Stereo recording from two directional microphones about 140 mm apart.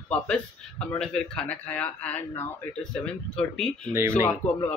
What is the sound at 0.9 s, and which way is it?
A man's voice, 5° left (ahead or behind).